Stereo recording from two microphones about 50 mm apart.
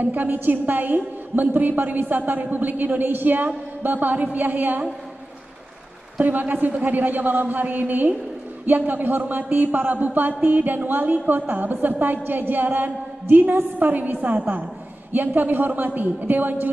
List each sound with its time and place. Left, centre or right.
0.0 s speech: right
6.1 s speech: right